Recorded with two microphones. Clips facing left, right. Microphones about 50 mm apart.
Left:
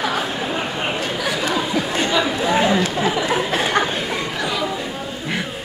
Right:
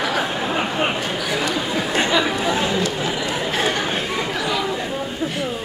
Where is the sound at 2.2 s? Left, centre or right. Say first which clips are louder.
Even; right.